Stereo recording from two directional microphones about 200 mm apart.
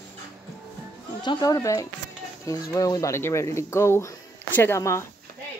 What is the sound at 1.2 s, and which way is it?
Speech, 20° left (ahead or behind).